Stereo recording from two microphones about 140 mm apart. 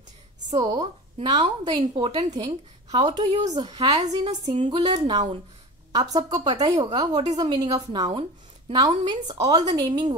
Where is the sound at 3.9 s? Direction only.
50° right (ahead or behind).